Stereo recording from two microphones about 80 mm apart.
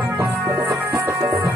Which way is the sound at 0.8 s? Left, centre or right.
Right.